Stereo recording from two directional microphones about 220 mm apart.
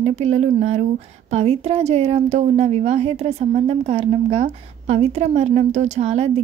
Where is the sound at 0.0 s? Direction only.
30° right (ahead or behind).